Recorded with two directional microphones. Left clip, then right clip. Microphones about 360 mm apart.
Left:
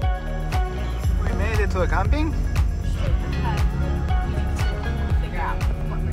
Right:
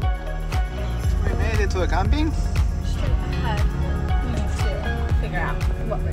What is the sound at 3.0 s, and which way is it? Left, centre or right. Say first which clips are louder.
Music: even; centre.